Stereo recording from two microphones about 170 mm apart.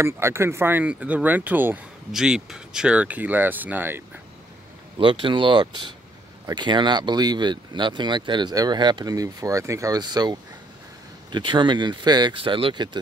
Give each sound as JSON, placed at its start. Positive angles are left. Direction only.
{"t": 0.0, "sound": "speech", "side_deg": -15}
{"t": 4.9, "sound": "speech", "side_deg": -30}